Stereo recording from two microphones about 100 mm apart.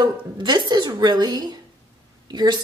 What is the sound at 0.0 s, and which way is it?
Speech, 45° right (ahead or behind).